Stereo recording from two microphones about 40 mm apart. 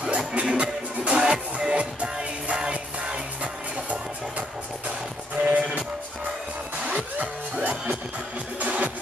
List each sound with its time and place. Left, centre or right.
0.0 s music: right
5.4 s music: right
7.0 s music: right